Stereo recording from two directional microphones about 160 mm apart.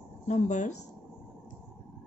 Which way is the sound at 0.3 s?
50° left (ahead or behind).